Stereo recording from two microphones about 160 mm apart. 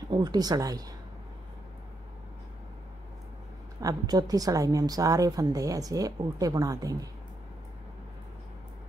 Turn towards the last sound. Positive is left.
turn(degrees=-20)  # may be behind; listen again after turning